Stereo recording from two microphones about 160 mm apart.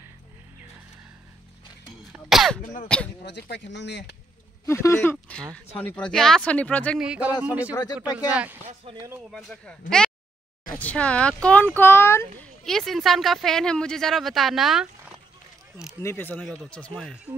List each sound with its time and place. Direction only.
2.1 s speech: centre (ahead or behind)
2.6 s a sound: 50° left (ahead or behind)
3.3 s speech: 90° left
4.6 s speech: 15° left (ahead or behind)
7.0 s speech: 5° right (ahead or behind)
9.3 s speech: centre (ahead or behind)
12.6 s speech: centre (ahead or behind)
16.0 s speech: 15° left (ahead or behind)